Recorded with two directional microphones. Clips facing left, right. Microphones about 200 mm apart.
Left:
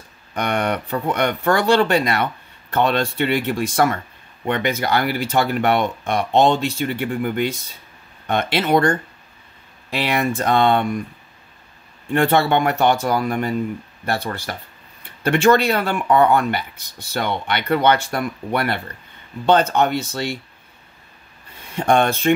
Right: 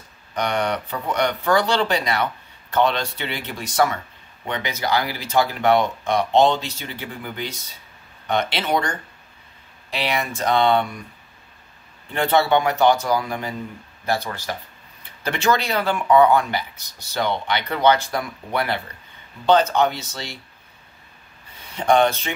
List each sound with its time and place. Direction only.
0.3 s speech: 55° left (ahead or behind)
12.1 s speech: 55° left (ahead or behind)
21.7 s speech: 55° left (ahead or behind)